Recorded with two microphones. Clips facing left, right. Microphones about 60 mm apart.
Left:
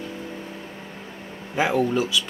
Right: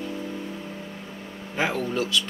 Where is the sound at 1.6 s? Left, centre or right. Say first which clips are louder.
Left 4 dB; centre.